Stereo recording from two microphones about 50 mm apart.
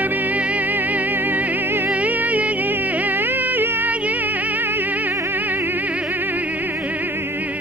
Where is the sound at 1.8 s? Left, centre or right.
Right.